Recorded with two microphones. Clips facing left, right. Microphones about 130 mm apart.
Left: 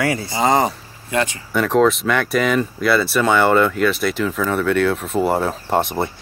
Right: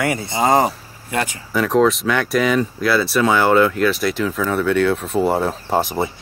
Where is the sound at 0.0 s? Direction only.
25° right (ahead or behind).